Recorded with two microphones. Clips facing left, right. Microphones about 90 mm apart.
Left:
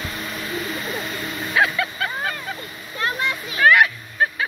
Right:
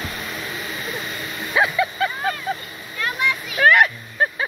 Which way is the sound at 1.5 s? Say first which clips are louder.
Right 1 dB; 20° right (ahead or behind).